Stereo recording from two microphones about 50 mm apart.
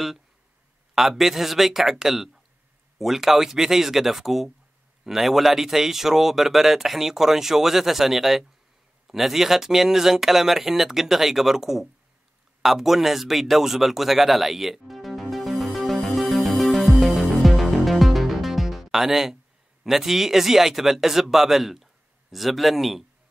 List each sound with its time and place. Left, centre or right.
0.9 s speech: centre
12.6 s a sound: centre
19.8 s speech: centre